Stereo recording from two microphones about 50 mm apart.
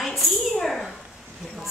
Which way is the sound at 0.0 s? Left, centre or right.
Centre.